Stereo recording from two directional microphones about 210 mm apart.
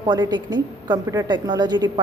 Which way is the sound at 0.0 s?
20° right (ahead or behind).